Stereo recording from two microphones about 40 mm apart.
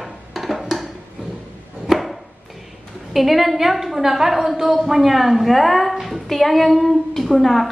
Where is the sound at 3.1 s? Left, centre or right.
Centre.